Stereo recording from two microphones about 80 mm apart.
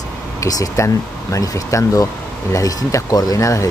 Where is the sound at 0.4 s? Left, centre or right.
Left.